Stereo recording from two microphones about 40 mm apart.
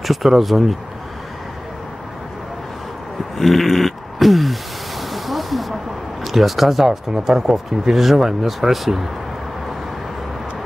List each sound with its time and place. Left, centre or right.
0.0 s speech: centre
3.3 s a sound: centre
6.2 s speech: centre
7.1 s speech: centre